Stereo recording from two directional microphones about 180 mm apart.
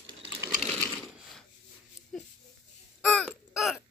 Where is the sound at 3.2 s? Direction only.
Centre (ahead or behind).